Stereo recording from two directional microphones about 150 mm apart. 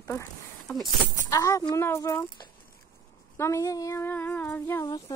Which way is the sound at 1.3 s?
20° left (ahead or behind).